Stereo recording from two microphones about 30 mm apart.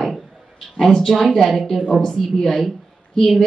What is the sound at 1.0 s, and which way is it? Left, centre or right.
A woman's voice, centre.